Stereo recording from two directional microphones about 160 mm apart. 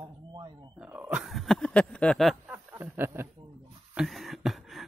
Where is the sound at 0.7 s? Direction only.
10° right (ahead or behind).